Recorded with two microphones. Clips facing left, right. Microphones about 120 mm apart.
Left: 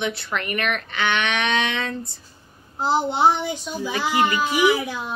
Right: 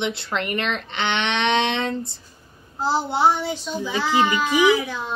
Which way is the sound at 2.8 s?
20° left (ahead or behind).